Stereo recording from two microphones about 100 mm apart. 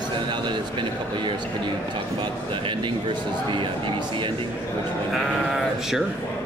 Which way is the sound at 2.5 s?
55° right (ahead or behind).